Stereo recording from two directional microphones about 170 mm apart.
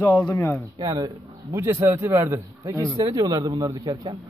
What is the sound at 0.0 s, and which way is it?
Speech, 20° left (ahead or behind).